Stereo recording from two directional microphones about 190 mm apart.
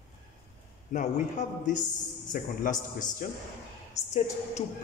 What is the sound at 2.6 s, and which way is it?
A man's voice, 45° left (ahead or behind).